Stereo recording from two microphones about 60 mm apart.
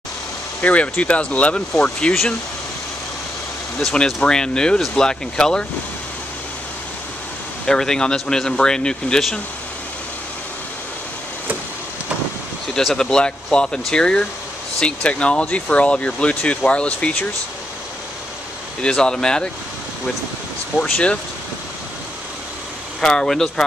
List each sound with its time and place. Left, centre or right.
0.6 s speech: left
3.9 s speech: centre
7.6 s speech: centre
12.7 s speech: centre
18.8 s speech: centre
20.7 s speech: centre
22.9 s speech: centre